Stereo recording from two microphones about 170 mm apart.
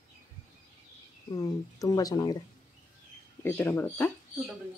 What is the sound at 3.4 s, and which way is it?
Speech, 10° left (ahead or behind).